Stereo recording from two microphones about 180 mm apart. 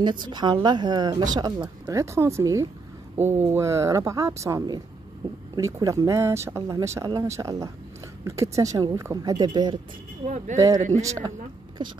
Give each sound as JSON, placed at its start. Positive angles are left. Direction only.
{"t": 0.0, "sound": "speech", "side_deg": -25}
{"t": 10.2, "sound": "speech", "side_deg": -40}
{"t": 10.9, "sound": "speech", "side_deg": -15}